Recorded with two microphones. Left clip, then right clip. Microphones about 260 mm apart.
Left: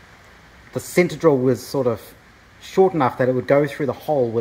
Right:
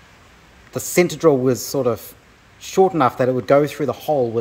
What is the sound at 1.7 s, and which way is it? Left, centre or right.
Speech, centre.